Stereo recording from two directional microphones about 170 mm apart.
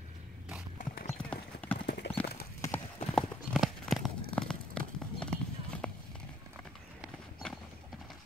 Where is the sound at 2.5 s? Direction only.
15° left (ahead or behind).